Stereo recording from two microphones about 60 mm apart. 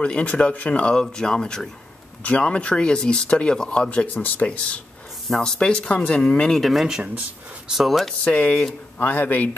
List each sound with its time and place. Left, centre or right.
0.0 s speech: left
6.6 s speech: centre
8.2 s speech: left